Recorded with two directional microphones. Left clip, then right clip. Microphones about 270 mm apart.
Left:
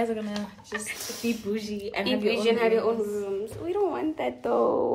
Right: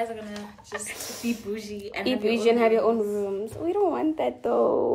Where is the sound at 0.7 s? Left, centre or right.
Centre.